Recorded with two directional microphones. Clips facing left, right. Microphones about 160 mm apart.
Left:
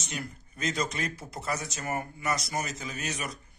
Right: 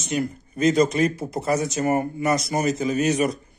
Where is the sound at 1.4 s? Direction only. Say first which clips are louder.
Right 11 dB; 40° right (ahead or behind).